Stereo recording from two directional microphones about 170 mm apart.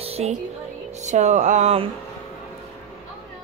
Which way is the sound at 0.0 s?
35° right (ahead or behind).